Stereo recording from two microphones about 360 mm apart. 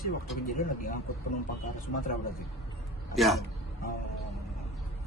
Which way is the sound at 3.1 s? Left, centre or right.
Centre.